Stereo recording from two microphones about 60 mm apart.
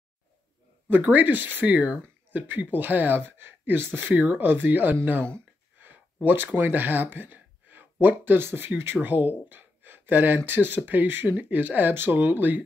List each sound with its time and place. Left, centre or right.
0.8 s speech: right
4.1 s speech: right
5.4 s a sound: right
6.2 s speech: right